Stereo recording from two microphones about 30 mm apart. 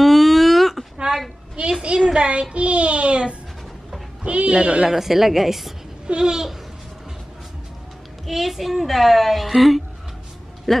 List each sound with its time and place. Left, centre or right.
0.0 s a sound: centre
1.1 s child singing: right
1.6 s a child's voice: right
4.8 s a woman's voice: centre
6.0 s babbling: right
8.3 s a woman's voice: centre
10.7 s speech: centre